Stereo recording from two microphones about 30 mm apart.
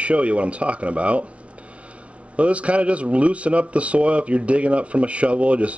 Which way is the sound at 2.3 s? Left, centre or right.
Right.